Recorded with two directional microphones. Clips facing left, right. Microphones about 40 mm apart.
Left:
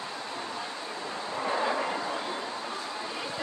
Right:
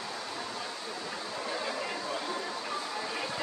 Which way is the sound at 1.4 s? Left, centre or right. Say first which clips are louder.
Left 8 dB; left.